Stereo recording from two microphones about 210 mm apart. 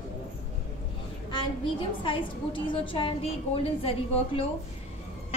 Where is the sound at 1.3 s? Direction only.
25° left (ahead or behind).